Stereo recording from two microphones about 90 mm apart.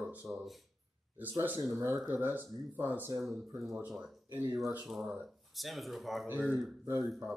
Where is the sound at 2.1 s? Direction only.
20° right (ahead or behind).